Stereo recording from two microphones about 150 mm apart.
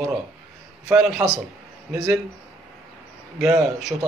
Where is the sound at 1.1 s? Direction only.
5° right (ahead or behind).